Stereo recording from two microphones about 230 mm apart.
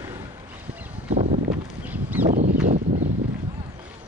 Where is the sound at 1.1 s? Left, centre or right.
Right.